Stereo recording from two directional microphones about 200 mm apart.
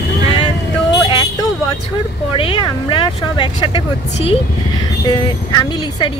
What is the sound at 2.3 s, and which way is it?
Speech, 25° left (ahead or behind).